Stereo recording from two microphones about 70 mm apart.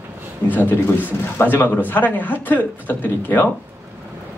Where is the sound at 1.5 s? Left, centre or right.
Left.